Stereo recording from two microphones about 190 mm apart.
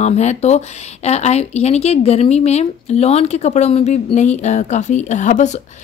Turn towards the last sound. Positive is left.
turn(degrees=40)  # may be behind; listen again after turning